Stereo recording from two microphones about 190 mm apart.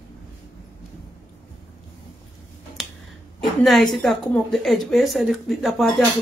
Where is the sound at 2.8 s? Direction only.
Centre (ahead or behind).